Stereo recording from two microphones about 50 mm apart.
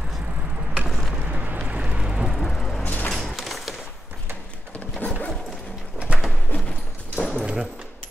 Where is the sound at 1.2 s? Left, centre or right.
Right; by 2.3 s centre.